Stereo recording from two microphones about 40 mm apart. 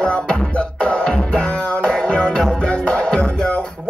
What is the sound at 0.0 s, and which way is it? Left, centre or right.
Music, left.